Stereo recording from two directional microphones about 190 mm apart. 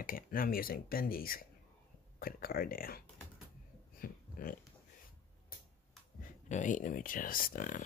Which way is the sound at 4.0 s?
50° left (ahead or behind).